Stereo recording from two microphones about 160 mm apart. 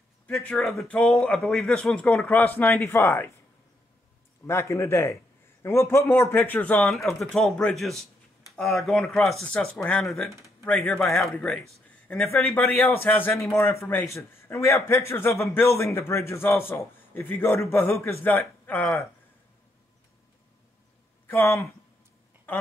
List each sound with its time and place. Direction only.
0.3 s speech: 5° left (ahead or behind)
4.5 s a man's voice: 15° left (ahead or behind)
21.3 s a man's voice: 15° left (ahead or behind)